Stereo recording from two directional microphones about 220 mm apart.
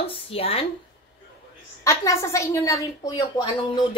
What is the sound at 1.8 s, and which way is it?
A woman's voice, 15° left (ahead or behind).